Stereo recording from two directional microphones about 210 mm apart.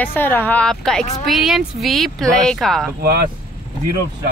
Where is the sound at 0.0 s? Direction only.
10° left (ahead or behind).